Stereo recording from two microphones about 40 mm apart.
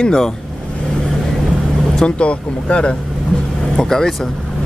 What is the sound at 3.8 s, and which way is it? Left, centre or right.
Speech, centre.